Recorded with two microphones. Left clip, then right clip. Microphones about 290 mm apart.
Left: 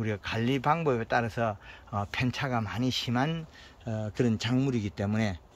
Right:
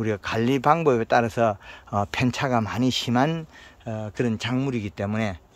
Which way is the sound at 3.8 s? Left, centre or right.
Centre.